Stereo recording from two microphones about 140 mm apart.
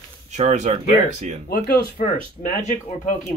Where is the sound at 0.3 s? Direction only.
55° right (ahead or behind).